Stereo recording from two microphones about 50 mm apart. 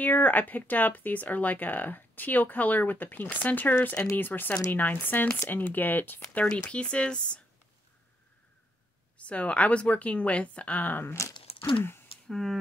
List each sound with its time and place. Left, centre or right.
0.0 s speech: left
6.7 s speech: left
9.2 s speech: left
11.1 s crumpling: left
11.8 s a sound: left
12.3 s speech: centre